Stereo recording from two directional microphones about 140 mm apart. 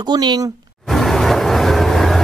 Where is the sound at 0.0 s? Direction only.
30° right (ahead or behind).